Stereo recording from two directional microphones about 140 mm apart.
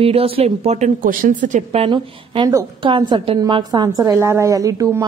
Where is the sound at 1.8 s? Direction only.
35° right (ahead or behind).